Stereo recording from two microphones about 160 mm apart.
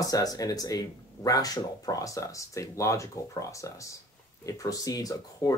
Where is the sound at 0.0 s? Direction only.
25° left (ahead or behind).